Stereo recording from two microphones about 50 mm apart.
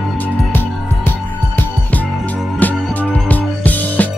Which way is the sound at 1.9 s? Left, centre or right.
Left.